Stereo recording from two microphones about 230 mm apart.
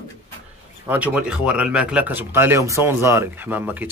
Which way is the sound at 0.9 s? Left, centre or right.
Centre.